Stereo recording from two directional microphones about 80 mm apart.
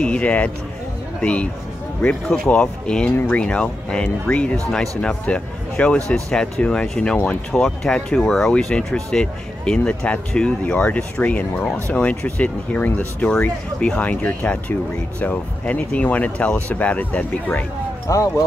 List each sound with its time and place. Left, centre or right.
0.0 s speech: centre
18.0 s speech: left